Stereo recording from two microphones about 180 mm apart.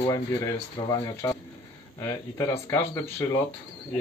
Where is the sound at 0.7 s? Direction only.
20° left (ahead or behind).